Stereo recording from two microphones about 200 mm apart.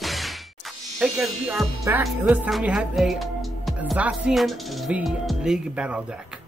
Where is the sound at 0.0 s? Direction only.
Centre (ahead or behind).